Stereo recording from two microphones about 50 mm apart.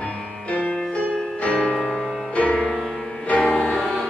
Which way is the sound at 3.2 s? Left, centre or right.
Left.